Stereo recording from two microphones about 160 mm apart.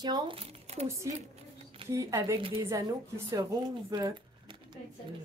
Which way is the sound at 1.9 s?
20° right (ahead or behind).